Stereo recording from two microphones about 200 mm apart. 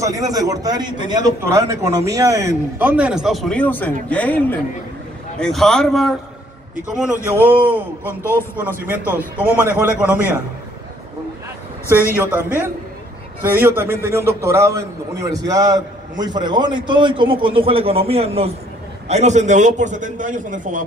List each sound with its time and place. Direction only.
0.0 s a man's voice: 15° right (ahead or behind); by 6.1 s centre (ahead or behind)
7.2 s a man's voice: 10° right (ahead or behind)
8.2 s a man's voice: 10° left (ahead or behind)
8.8 s a man's voice: 10° right (ahead or behind)
11.9 s a man's voice: 10° right (ahead or behind); by 20.8 s 40° right (ahead or behind)